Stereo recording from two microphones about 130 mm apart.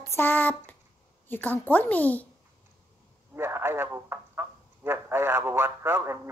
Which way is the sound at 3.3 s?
20° right (ahead or behind).